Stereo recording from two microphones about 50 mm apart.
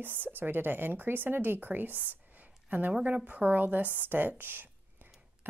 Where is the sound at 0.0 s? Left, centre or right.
Right.